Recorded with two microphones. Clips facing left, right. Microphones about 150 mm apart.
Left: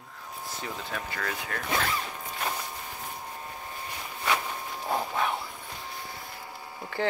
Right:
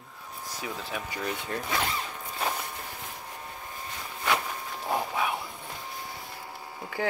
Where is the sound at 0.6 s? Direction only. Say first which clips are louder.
Right 1 dB; 10° right (ahead or behind).